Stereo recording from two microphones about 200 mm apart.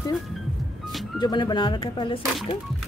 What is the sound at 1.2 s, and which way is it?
Speech, 20° left (ahead or behind).